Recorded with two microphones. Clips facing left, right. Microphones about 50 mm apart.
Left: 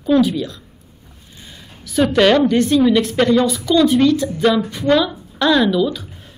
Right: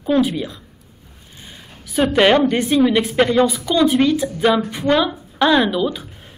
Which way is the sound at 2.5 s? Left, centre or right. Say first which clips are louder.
Left 2 dB; centre.